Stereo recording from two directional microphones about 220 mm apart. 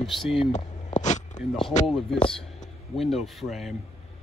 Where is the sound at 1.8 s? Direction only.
Centre (ahead or behind).